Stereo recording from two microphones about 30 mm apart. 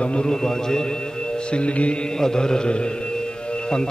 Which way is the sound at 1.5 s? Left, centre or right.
Left.